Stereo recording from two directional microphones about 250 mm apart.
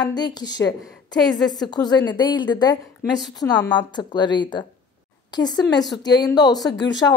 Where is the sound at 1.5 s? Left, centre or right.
Centre.